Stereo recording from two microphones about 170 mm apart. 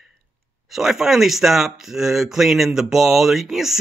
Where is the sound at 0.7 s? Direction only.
5° right (ahead or behind).